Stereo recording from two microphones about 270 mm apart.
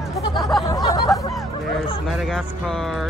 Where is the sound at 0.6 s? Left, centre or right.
Centre.